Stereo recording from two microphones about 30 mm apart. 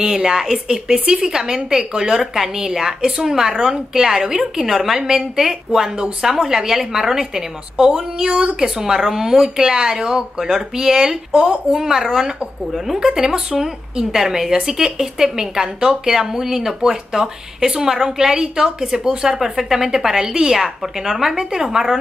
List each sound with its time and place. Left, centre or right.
0.0 s speech: centre
1.0 s speech: right
1.3 s a woman's voice: right
9.6 s a woman's voice: right; by 13.0 s centre
13.0 s a woman's voice: right